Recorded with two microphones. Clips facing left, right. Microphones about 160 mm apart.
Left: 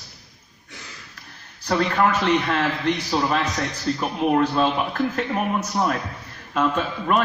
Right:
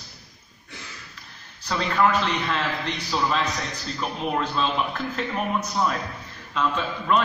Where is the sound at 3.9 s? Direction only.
55° left (ahead or behind).